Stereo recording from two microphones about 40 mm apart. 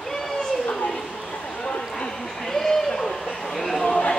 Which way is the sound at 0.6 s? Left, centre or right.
Left.